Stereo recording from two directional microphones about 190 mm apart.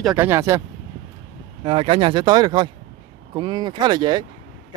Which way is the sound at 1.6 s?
30° right (ahead or behind).